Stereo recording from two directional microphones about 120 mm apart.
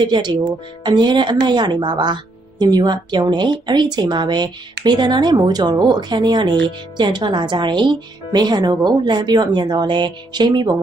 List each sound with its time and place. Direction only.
0.0 s a woman's voice: 40° right (ahead or behind)